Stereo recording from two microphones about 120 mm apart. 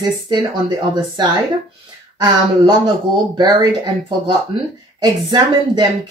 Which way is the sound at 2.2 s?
35° right (ahead or behind).